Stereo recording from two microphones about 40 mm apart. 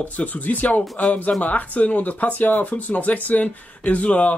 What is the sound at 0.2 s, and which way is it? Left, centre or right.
Speech, left.